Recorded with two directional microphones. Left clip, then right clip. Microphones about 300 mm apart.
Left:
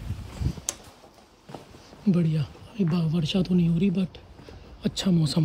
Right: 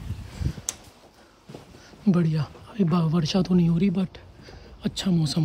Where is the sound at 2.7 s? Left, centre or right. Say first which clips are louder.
Right 3 dB; right.